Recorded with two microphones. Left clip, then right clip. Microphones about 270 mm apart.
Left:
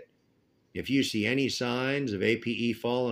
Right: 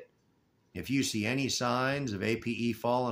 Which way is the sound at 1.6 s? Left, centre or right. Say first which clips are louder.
Left 1 dB; right.